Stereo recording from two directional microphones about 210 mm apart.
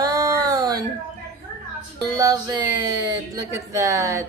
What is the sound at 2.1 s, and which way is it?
Speech, 15° right (ahead or behind).